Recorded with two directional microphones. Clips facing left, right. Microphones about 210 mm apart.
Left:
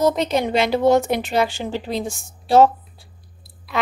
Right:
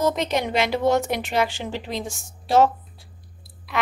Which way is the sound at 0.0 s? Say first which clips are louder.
Left 4 dB; 30° left (ahead or behind).